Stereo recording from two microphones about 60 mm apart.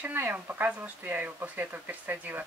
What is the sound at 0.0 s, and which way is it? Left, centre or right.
Speech, right.